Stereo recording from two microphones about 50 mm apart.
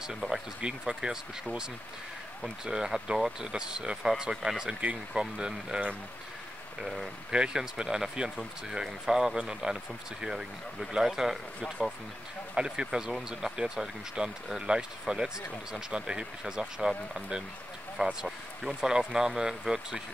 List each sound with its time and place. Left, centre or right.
0.3 s speech: centre
2.6 s speech: centre
6.8 s speech: centre
7.2 s speech: centre